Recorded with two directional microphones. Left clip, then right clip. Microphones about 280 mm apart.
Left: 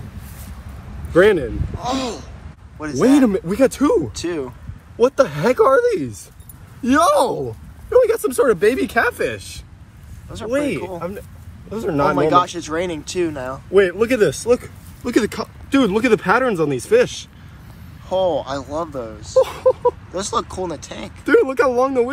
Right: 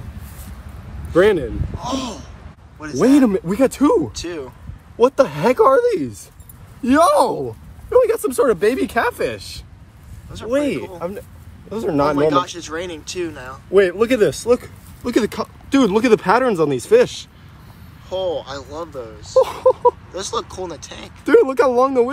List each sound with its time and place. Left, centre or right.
1.1 s speech: right
1.8 s speech: centre
4.9 s speech: right
7.3 s speech: centre
11.0 s speech: right
12.2 s speech: centre
13.7 s speech: right
18.0 s speech: centre
19.4 s a sound: right
20.1 s speech: centre
21.3 s speech: right